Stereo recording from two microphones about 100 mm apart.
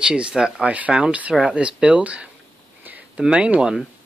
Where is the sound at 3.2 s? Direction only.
10° right (ahead or behind).